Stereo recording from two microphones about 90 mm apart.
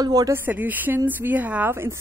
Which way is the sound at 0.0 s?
45° right (ahead or behind).